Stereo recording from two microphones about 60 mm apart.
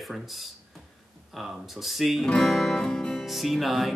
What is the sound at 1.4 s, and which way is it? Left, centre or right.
Speech, centre.